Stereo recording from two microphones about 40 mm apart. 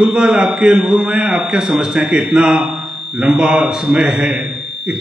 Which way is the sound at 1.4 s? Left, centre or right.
Right.